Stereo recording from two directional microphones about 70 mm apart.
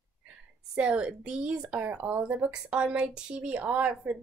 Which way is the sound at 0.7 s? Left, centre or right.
Centre.